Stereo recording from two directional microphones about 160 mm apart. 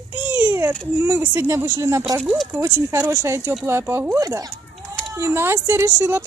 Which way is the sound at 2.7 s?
15° right (ahead or behind).